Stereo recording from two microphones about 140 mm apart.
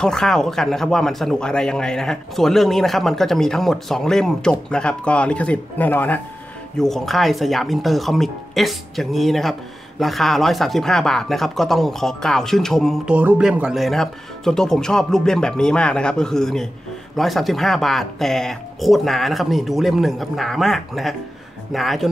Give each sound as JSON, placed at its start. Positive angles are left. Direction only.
{"t": 0.0, "sound": "speech", "side_deg": 5}
{"t": 6.8, "sound": "speech", "side_deg": 0}
{"t": 13.1, "sound": "speech", "side_deg": -10}